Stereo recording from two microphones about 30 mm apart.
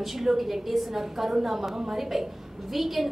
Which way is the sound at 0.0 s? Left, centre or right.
Centre.